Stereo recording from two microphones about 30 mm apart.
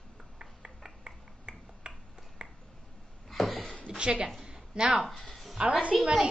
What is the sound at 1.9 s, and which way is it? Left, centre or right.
Finger snapping, right.